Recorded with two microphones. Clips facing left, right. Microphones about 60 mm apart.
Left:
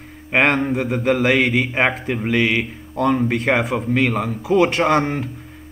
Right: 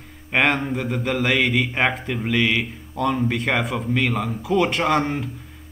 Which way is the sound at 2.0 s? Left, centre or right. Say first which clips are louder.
Left 3 dB; left.